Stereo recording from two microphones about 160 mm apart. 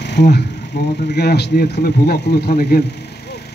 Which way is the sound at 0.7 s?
90° left.